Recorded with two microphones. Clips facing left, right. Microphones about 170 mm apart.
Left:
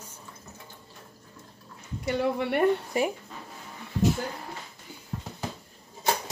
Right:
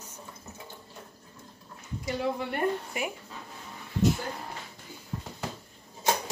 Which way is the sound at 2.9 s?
35° left (ahead or behind).